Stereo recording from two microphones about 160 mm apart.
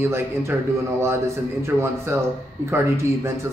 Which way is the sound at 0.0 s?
15° right (ahead or behind).